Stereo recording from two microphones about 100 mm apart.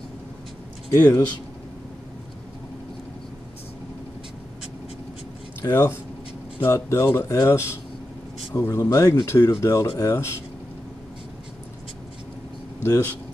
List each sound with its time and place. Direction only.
0.9 s speech: 35° left (ahead or behind)
5.6 s speech: 25° left (ahead or behind)
12.8 s speech: 20° left (ahead or behind)